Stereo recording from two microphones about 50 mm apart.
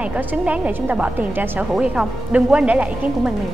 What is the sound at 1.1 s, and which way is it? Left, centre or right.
Speech, right.